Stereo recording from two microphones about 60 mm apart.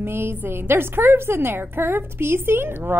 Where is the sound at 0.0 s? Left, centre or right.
Right.